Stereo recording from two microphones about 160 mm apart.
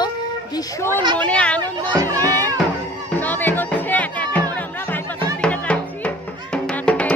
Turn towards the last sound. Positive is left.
turn(degrees=5)  # may be behind; listen again after turning